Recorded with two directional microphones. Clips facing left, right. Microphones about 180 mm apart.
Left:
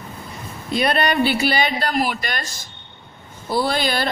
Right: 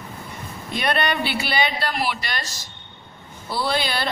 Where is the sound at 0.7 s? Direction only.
35° left (ahead or behind).